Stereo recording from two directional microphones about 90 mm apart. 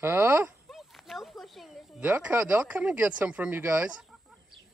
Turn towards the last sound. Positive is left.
turn(degrees=-20)  # may be behind; listen again after turning